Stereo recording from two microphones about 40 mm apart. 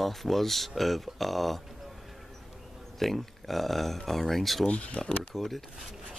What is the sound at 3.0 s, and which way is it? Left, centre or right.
Speech, centre.